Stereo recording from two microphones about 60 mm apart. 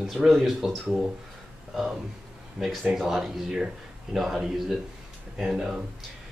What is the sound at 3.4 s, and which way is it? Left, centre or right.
Speech, centre.